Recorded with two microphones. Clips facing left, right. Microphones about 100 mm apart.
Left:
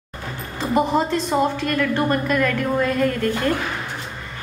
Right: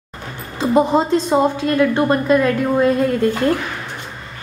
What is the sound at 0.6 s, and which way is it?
A woman's voice, 20° right (ahead or behind).